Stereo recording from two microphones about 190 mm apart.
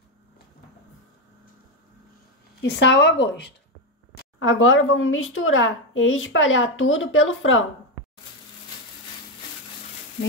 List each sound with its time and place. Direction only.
2.6 s speech: 70° left (ahead or behind)
4.4 s a woman's voice: 90° left